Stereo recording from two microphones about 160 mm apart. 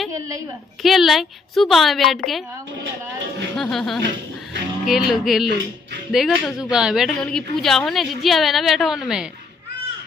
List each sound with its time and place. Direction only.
0.8 s a woman's voice: centre (ahead or behind)
3.5 s a woman's voice: centre (ahead or behind)